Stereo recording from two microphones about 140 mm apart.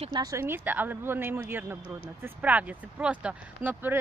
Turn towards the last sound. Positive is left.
turn(degrees=-10)  # may be behind; listen again after turning